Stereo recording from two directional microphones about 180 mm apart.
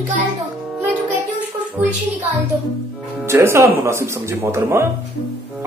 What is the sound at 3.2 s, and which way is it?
Speech, 15° right (ahead or behind).